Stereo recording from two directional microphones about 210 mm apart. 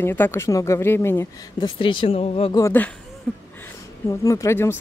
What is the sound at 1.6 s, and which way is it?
Speech, 25° left (ahead or behind).